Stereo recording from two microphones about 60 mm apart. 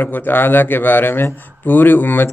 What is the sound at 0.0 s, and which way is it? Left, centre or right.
A man's voice, left.